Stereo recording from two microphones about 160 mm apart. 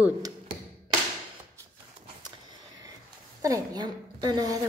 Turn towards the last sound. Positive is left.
turn(degrees=-25)  # may be behind; listen again after turning